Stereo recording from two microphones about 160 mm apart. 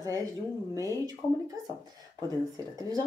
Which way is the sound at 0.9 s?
25° right (ahead or behind).